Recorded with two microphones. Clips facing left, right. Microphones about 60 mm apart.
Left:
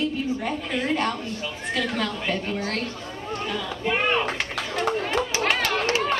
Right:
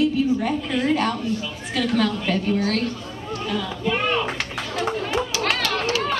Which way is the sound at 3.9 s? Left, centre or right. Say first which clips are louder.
Even; centre.